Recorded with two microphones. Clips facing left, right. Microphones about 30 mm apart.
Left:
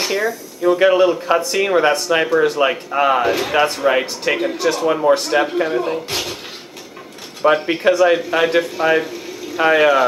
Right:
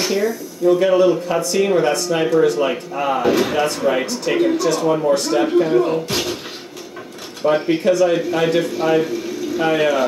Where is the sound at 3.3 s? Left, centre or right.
Centre.